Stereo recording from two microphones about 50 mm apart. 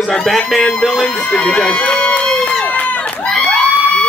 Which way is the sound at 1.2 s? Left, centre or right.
Left.